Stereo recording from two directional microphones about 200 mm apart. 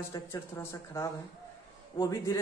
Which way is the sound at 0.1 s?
15° left (ahead or behind).